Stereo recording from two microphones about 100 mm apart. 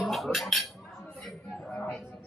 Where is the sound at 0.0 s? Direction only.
Centre (ahead or behind).